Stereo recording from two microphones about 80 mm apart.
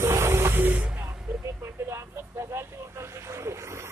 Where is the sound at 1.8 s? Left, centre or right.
Right.